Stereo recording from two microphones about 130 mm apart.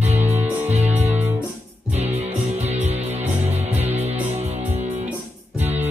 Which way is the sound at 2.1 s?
55° right (ahead or behind).